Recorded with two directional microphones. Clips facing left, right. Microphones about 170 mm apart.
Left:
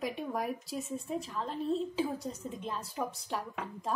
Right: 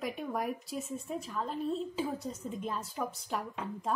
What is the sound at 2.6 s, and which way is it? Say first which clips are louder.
Speech: even; centre (ahead or behind).